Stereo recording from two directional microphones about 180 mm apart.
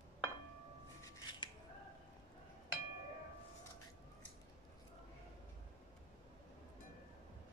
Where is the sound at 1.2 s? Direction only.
25° left (ahead or behind).